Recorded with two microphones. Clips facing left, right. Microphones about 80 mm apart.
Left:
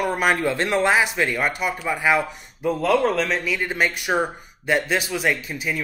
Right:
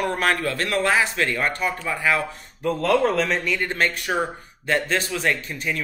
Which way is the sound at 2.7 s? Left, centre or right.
Centre.